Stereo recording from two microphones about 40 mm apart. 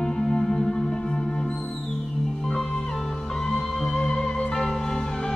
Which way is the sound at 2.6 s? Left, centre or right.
Left.